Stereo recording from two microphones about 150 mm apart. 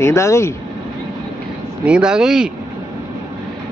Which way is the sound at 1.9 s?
5° right (ahead or behind).